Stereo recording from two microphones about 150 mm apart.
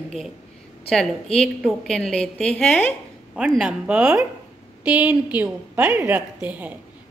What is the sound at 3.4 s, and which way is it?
A woman's voice, 5° right (ahead or behind).